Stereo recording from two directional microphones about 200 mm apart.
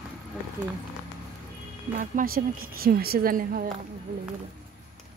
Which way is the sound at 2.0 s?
45° right (ahead or behind).